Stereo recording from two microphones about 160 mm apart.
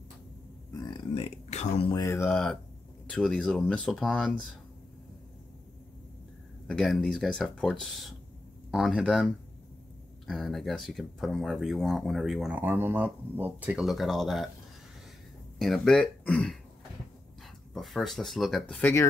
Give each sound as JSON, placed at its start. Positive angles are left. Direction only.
{"t": 0.7, "sound": "a sound", "side_deg": 30}
{"t": 2.0, "sound": "speech", "side_deg": 20}
{"t": 2.3, "sound": "speech", "side_deg": 5}
{"t": 6.7, "sound": "speech", "side_deg": 5}
{"t": 15.6, "sound": "speech", "side_deg": 0}
{"t": 17.7, "sound": "speech", "side_deg": 0}
{"t": 18.8, "sound": "speech", "side_deg": 10}